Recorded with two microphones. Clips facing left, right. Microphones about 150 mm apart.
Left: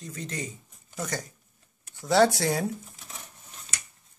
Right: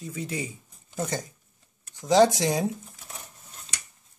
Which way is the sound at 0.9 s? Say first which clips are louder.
Right 3 dB; 25° right (ahead or behind).